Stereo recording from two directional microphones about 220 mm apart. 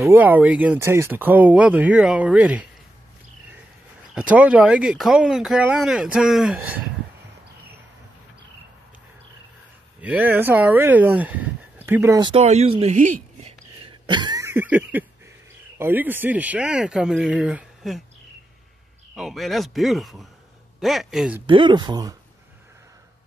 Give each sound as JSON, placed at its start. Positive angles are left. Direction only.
{"t": 0.0, "sound": "speech", "side_deg": -10}
{"t": 4.1, "sound": "speech", "side_deg": -5}
{"t": 10.0, "sound": "speech", "side_deg": -5}
{"t": 19.1, "sound": "speech", "side_deg": 0}
{"t": 21.5, "sound": "speech", "side_deg": -20}